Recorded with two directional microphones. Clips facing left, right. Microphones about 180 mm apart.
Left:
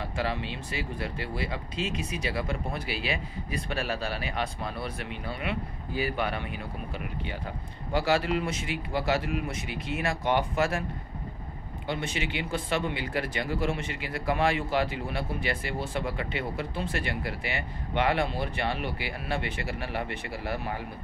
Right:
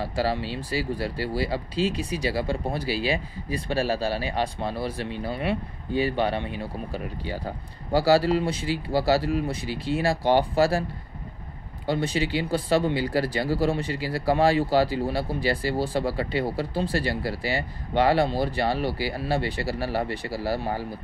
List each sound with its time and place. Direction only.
0.0 s speech: 35° right (ahead or behind)